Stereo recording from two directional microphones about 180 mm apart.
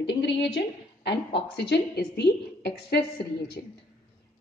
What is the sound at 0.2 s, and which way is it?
A woman's voice, 75° left (ahead or behind).